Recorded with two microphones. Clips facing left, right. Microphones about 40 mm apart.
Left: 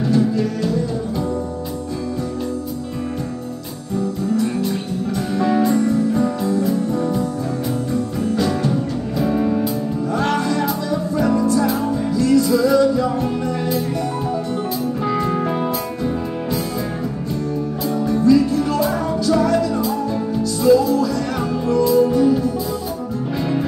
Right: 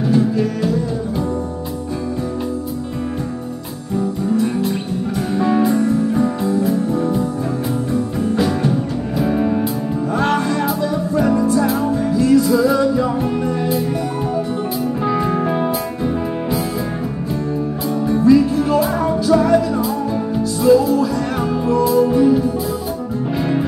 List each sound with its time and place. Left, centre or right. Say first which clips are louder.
0.0 s music: right 1 dB; centre
5.4 s music: right 1 dB; centre
18.0 s music: right 2 dB; centre